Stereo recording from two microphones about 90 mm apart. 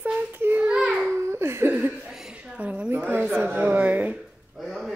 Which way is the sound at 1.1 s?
30° right (ahead or behind).